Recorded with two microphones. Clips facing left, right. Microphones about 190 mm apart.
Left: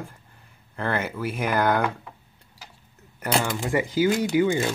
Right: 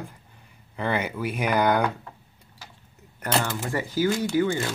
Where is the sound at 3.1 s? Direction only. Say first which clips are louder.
Left 1 dB; 5° left (ahead or behind).